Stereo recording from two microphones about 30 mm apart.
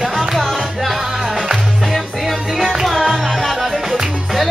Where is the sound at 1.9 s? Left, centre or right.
Centre.